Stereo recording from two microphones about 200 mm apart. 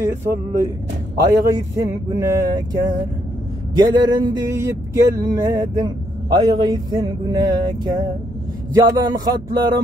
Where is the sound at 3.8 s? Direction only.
20° right (ahead or behind).